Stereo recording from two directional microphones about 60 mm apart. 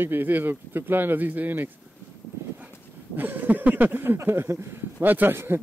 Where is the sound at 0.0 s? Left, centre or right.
Right.